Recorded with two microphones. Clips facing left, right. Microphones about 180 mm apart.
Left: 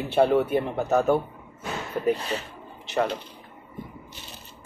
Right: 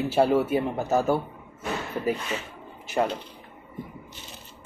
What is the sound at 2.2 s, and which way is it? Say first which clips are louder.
Speech: left 1 dB; 35° left (ahead or behind).